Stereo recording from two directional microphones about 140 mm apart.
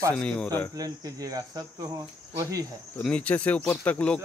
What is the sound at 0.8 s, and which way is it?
Speech, 25° right (ahead or behind).